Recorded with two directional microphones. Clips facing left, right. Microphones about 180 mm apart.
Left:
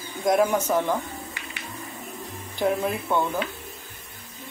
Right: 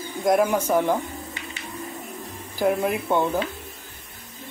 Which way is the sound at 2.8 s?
20° right (ahead or behind).